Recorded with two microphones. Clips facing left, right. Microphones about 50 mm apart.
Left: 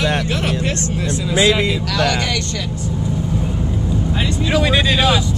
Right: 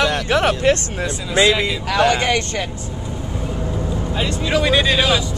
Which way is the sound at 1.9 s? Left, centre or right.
Right.